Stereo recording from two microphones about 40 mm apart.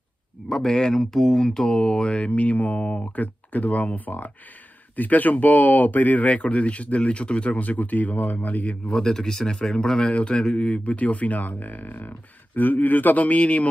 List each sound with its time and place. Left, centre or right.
0.5 s speech: centre; by 6.2 s left
6.2 s speech: left
8.9 s speech: centre; by 13.7 s left